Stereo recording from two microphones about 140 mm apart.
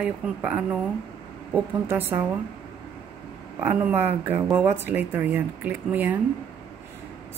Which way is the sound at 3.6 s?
15° right (ahead or behind).